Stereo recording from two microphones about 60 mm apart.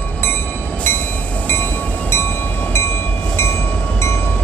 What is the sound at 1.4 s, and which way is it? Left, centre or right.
Train, left.